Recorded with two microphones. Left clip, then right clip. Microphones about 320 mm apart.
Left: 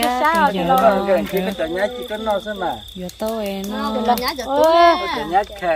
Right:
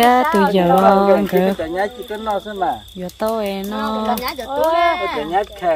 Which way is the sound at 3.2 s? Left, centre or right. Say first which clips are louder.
Right 4 dB; centre.